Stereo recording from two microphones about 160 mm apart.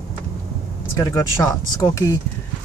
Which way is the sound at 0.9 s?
20° left (ahead or behind).